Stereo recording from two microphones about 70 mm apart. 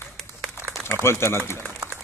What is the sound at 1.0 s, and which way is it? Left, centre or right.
Speech, left.